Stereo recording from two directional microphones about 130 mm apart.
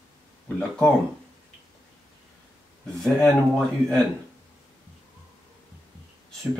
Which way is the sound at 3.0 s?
5° left (ahead or behind).